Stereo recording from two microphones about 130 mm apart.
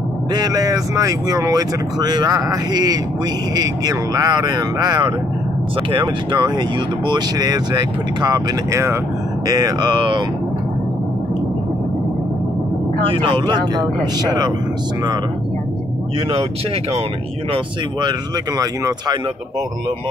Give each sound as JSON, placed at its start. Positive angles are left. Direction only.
{"t": 0.3, "sound": "speech", "side_deg": -30}
{"t": 13.2, "sound": "speech", "side_deg": -35}
{"t": 18.6, "sound": "speech", "side_deg": -30}